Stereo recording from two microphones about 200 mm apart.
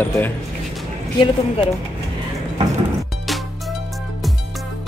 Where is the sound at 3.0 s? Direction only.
Centre (ahead or behind).